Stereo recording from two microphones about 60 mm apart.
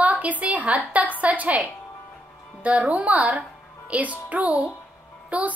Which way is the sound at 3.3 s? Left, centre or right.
Centre.